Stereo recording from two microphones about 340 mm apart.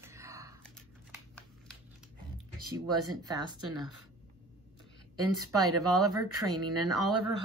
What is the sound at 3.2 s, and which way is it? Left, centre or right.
Speech, centre.